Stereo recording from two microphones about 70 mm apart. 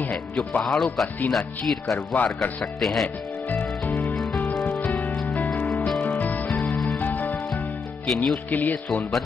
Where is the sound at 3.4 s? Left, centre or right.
Left.